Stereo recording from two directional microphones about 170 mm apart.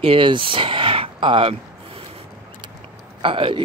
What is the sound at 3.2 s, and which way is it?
Speech, 30° right (ahead or behind).